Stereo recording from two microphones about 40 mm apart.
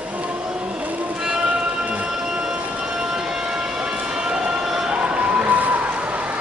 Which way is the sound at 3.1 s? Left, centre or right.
Centre.